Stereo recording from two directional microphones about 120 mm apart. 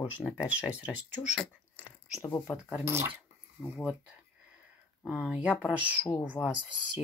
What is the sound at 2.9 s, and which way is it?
Speech, 20° right (ahead or behind).